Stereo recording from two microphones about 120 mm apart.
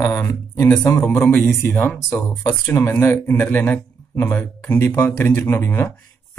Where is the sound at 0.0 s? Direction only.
25° left (ahead or behind).